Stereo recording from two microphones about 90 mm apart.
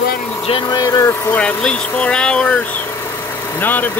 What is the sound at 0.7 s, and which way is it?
Speech, 50° left (ahead or behind).